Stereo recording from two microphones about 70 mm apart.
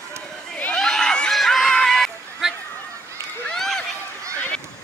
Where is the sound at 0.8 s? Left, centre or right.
Centre.